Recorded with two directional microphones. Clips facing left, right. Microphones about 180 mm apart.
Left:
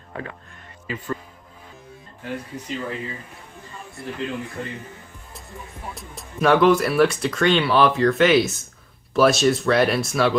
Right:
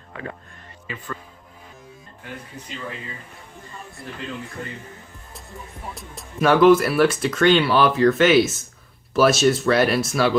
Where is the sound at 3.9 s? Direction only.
Centre (ahead or behind).